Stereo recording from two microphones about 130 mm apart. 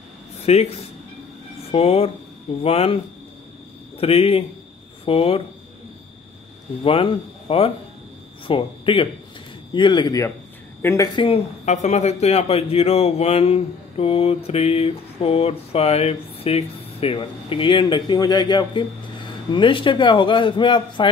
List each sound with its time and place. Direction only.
0.5 s speech: 55° left (ahead or behind)
1.7 s speech: 50° left (ahead or behind)
4.0 s speech: 50° left (ahead or behind)
6.8 s a man's voice: 45° left (ahead or behind); by 11.1 s 20° left (ahead or behind)
11.1 s speech: 45° left (ahead or behind)
11.6 s a man's voice: 65° left (ahead or behind); by 21.1 s 40° left (ahead or behind)